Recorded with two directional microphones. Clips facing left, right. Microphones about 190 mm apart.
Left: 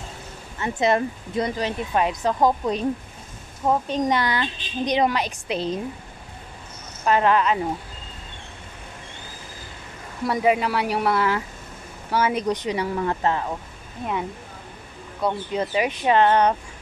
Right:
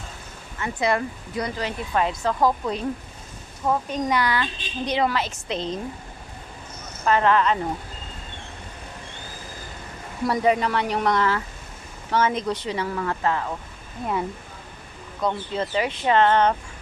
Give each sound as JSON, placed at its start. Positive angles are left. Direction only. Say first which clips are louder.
{"t": 0.6, "sound": "speech", "louder": "left 3 dB", "side_deg": 20}
{"t": 7.1, "sound": "speech", "louder": "even", "side_deg": 15}
{"t": 10.2, "sound": "speech", "louder": "even", "side_deg": 5}
{"t": 15.1, "sound": "speech", "louder": "left 1 dB", "side_deg": 10}